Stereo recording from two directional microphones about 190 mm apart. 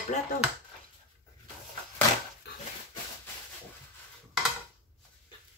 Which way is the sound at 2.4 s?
60° left (ahead or behind).